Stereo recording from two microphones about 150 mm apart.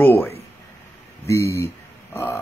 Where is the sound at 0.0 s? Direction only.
15° left (ahead or behind).